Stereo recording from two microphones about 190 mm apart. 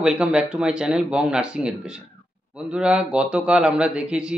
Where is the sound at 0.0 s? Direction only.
5° right (ahead or behind).